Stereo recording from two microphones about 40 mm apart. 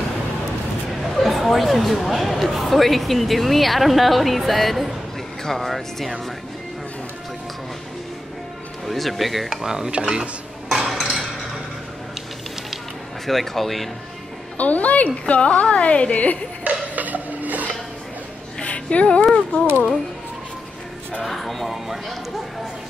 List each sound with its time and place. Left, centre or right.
1.0 s speech: centre
8.8 s speech: centre
10.9 s a sound: centre
13.3 s speech: centre
14.6 s a woman's voice: left
16.6 s a sound: right
18.6 s a sound: left
19.3 s speech: left
21.2 s speech: centre